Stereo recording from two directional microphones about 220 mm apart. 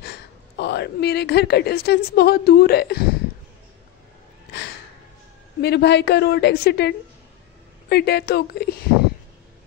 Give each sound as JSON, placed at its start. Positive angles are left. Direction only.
{"t": 0.0, "sound": "a woman's voice", "side_deg": 50}
{"t": 5.6, "sound": "a woman's voice", "side_deg": 50}
{"t": 7.9, "sound": "a woman's voice", "side_deg": 45}